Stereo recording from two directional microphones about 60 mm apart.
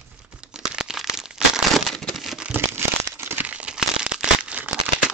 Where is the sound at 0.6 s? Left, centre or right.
Centre.